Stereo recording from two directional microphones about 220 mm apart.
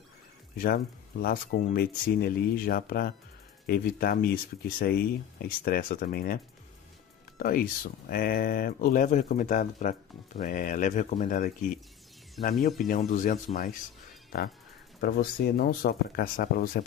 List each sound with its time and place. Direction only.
1.2 s speech: 40° left (ahead or behind)
15.0 s speech: 45° left (ahead or behind)